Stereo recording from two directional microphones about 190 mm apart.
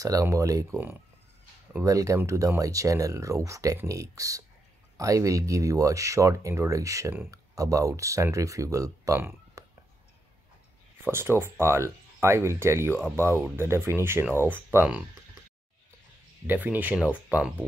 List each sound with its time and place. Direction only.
0.0 s speech: 15° right (ahead or behind)
11.1 s speech: 10° right (ahead or behind)
16.4 s speech: 10° right (ahead or behind)